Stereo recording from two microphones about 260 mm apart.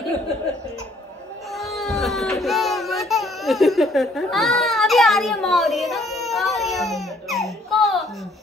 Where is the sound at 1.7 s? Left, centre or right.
Centre.